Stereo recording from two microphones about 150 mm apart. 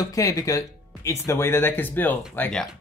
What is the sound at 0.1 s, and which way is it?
Speech, 20° left (ahead or behind).